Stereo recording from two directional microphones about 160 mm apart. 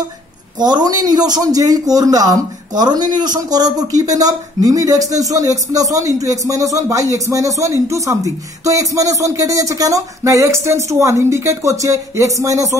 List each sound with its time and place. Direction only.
0.6 s a man's voice: 25° right (ahead or behind)